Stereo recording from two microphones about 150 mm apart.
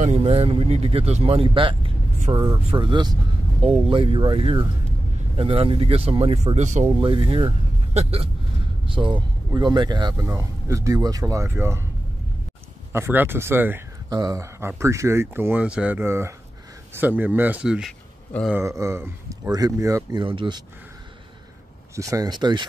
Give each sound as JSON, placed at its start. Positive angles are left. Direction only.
{"t": 0.0, "sound": "speech", "side_deg": -45}
{"t": 2.3, "sound": "speech", "side_deg": -20}
{"t": 2.7, "sound": "speech", "side_deg": -35}
{"t": 7.0, "sound": "speech", "side_deg": -35}
{"t": 12.9, "sound": "speech", "side_deg": -15}
{"t": 14.0, "sound": "speech", "side_deg": -25}
{"t": 18.5, "sound": "speech", "side_deg": -20}
{"t": 21.9, "sound": "speech", "side_deg": -20}